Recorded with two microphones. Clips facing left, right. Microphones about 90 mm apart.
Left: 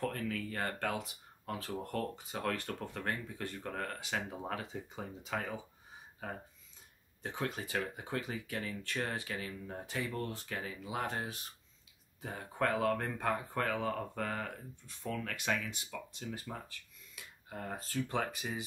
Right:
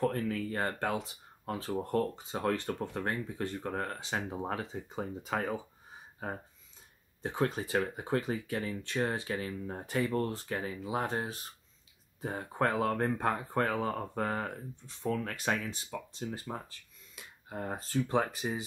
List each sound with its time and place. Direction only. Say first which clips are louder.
0.0 s speech: right 6 dB; 30° right (ahead or behind)
5.2 s speech: right 4 dB; 40° right (ahead or behind)